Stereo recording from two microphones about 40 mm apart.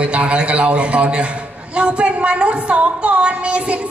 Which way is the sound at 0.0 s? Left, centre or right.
Right.